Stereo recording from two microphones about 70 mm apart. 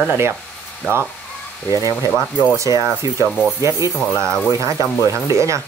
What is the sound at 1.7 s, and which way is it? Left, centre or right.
Speech, left.